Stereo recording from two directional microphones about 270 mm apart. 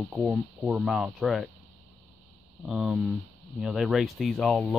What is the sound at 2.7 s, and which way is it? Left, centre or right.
Speech, centre.